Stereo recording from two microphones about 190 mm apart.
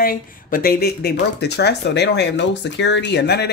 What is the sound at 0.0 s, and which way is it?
Speech, 50° left (ahead or behind).